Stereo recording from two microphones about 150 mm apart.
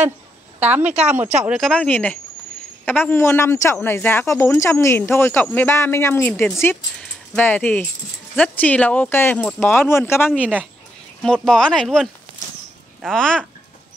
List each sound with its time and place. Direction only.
0.6 s speech: 10° right (ahead or behind)
1.7 s a man's voice: 10° left (ahead or behind)